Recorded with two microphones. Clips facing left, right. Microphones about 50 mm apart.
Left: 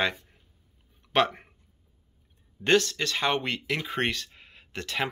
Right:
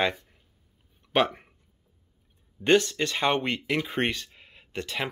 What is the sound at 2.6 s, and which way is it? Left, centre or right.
Speech, centre.